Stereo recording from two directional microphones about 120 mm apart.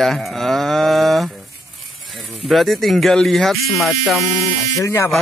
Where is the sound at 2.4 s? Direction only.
Centre (ahead or behind).